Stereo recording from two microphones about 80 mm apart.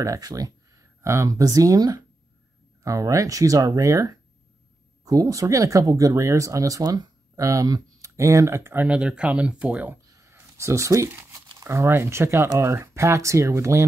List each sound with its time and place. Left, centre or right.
0.0 s speech: right
8.8 s speech: centre
10.0 s a sound: right
11.6 s speech: right